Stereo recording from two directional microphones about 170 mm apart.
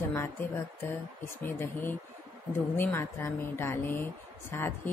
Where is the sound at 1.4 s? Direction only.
10° left (ahead or behind).